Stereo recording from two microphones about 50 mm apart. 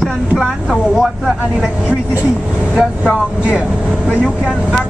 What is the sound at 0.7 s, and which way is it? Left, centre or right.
Speech, centre.